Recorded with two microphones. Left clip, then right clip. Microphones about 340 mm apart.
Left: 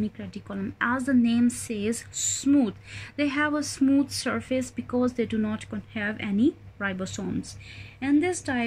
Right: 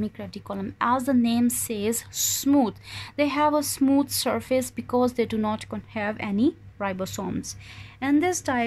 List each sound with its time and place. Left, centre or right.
0.0 s a woman's voice: centre